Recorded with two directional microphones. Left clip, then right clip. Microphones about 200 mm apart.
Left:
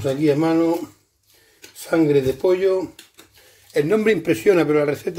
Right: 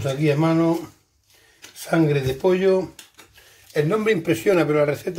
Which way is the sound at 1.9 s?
45° left (ahead or behind).